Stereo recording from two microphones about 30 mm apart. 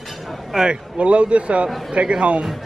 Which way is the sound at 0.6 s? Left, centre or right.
Right.